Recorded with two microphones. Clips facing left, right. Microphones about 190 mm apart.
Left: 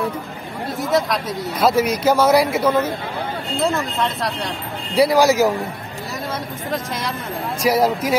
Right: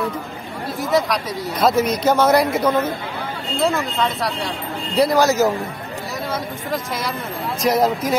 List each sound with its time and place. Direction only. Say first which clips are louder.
0.7 s speech: even; centre (ahead or behind)
7.6 s speech: even; 10° left (ahead or behind)